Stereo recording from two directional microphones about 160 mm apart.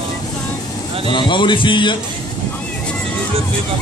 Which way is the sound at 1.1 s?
30° left (ahead or behind).